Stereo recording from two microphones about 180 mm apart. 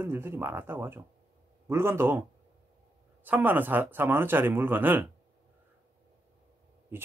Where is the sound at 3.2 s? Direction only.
10° right (ahead or behind).